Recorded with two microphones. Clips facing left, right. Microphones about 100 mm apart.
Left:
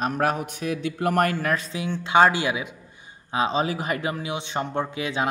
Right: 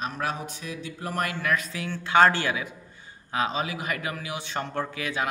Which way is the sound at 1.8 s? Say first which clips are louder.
Left 2 dB; 20° left (ahead or behind).